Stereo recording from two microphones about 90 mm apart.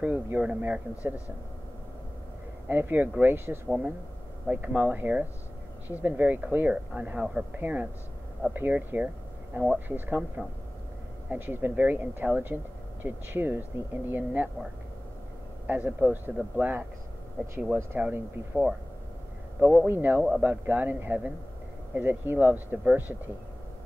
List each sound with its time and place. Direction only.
0.0 s speech: 20° right (ahead or behind)
2.7 s speech: 20° right (ahead or behind)
3.6 s speech: 15° right (ahead or behind)
15.6 s speech: 20° right (ahead or behind)
17.9 s speech: 15° right (ahead or behind)
19.6 s speech: 20° right (ahead or behind)